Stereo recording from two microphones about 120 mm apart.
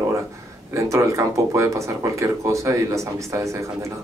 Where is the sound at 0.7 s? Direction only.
25° right (ahead or behind).